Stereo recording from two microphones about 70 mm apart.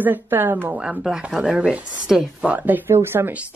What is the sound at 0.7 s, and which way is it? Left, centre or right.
Speech, centre.